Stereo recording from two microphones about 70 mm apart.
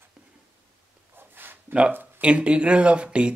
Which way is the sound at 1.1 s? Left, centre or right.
Right.